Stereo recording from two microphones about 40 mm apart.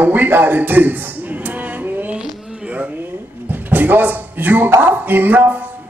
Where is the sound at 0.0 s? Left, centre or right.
Right.